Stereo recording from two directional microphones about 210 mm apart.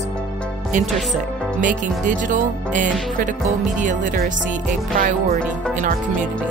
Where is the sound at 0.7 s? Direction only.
35° right (ahead or behind).